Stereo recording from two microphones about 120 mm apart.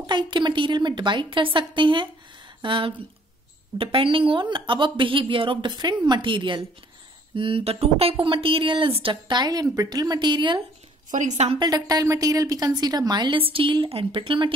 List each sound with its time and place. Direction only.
0.0 s a woman's voice: 40° right (ahead or behind)
11.1 s a woman's voice: 90° right; by 11.6 s 60° right (ahead or behind)
11.6 s a woman's voice: 35° right (ahead or behind)